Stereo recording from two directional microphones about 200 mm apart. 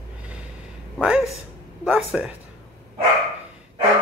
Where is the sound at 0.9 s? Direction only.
Centre (ahead or behind).